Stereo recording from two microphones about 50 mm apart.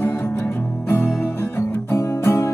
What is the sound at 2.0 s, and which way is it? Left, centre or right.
Music, left.